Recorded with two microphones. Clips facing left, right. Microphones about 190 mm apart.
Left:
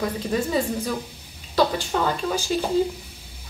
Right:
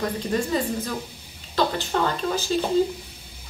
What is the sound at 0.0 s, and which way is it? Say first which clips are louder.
Speech: left 1 dB; 5° left (ahead or behind).